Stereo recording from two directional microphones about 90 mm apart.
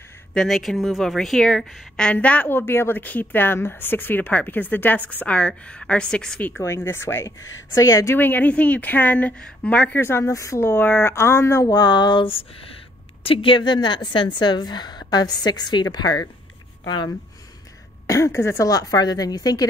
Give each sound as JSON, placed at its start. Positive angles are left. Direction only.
{"t": 0.3, "sound": "speech", "side_deg": 5}
{"t": 2.0, "sound": "a woman's voice", "side_deg": 15}
{"t": 6.6, "sound": "a woman's voice", "side_deg": 30}
{"t": 8.2, "sound": "speech", "side_deg": 20}
{"t": 11.7, "sound": "a sound", "side_deg": 55}
{"t": 13.2, "sound": "a woman's voice", "side_deg": 85}
{"t": 18.0, "sound": "a woman's voice", "side_deg": 35}